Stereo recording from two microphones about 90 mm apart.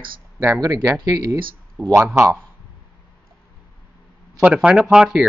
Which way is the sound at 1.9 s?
30° right (ahead or behind).